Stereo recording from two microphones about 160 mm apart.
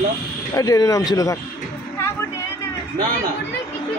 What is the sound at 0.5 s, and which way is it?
Speech, 20° left (ahead or behind).